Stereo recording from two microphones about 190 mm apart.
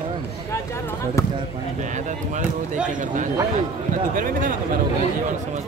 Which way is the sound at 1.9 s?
40° right (ahead or behind).